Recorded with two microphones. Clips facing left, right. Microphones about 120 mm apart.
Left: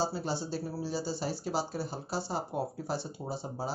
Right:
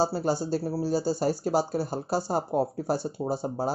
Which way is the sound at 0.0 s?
45° right (ahead or behind).